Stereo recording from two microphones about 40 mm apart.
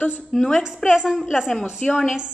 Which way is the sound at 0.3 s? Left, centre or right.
Centre.